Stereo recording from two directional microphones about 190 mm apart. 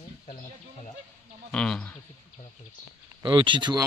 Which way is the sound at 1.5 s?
5° left (ahead or behind).